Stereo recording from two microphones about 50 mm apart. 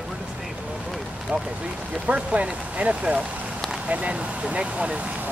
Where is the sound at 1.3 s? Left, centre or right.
Right.